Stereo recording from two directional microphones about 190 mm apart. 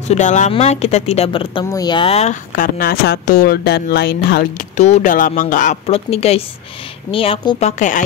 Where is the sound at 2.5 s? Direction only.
50° left (ahead or behind).